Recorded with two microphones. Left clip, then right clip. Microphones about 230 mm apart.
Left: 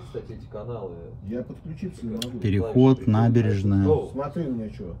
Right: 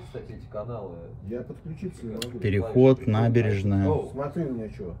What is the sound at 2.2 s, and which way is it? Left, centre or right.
Speech, right.